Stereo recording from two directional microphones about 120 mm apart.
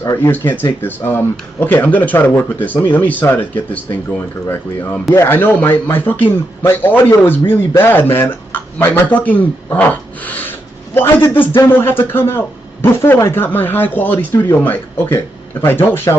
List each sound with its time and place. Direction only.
0.0 s a man's voice: 20° left (ahead or behind)
5.1 s a man's voice: 20° left (ahead or behind)